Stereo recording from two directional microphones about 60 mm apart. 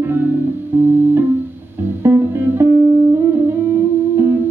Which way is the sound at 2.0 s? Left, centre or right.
Right.